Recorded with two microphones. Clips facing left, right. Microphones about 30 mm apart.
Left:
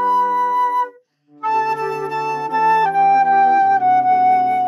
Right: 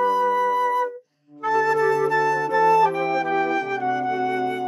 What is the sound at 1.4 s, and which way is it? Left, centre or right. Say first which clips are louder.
Music: left 2 dB; left.